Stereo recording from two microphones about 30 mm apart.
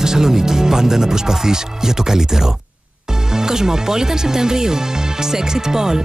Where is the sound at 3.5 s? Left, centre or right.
Centre.